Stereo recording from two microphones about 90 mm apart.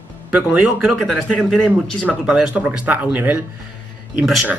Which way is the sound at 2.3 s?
10° right (ahead or behind).